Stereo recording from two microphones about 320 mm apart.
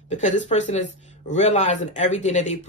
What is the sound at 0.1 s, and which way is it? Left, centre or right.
Speech, left.